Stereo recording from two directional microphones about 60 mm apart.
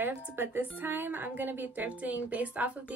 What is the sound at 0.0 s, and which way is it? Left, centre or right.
A woman's voice, right.